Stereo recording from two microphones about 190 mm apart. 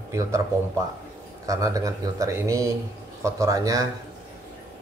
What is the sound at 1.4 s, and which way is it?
Speech, 15° right (ahead or behind).